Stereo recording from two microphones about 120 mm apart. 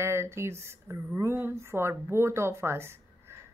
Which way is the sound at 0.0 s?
20° right (ahead or behind).